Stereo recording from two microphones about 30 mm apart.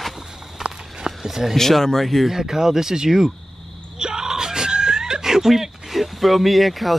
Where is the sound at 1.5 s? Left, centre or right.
Centre.